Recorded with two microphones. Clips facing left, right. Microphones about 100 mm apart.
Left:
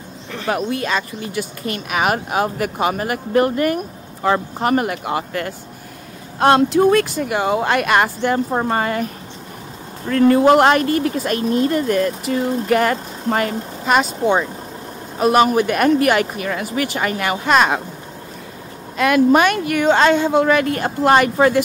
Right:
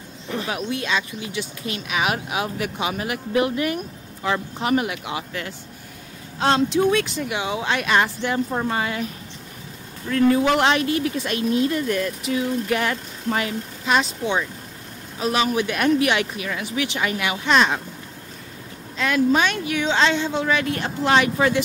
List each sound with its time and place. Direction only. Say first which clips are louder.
0.8 s speech: left 3 dB; 45° left (ahead or behind)
6.7 s speech: left 5 dB; 60° left (ahead or behind)
7.2 s speech: left 7 dB; 45° left (ahead or behind)
8.5 s speech: left 5 dB; 35° left (ahead or behind)
8.7 s speech: left 5 dB; 50° left (ahead or behind)
10.1 s speech: left 6 dB; 40° left (ahead or behind)
18.9 s speech: left 6 dB; 60° left (ahead or behind)